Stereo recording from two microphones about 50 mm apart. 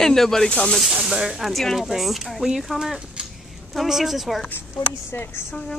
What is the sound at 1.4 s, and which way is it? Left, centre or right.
Speech, centre.